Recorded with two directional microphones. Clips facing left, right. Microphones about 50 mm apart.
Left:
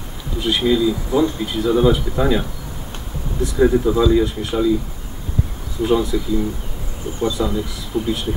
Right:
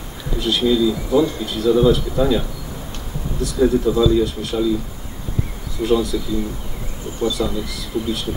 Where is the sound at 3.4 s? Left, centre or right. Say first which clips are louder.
Left 1 dB; left.